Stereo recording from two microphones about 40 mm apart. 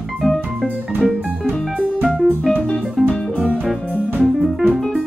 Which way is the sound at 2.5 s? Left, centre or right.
Left.